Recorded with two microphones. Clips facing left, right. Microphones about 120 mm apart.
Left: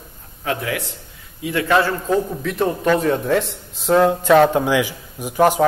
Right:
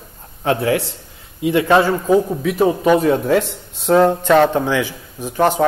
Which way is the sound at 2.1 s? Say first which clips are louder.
Right 5 dB; 10° right (ahead or behind).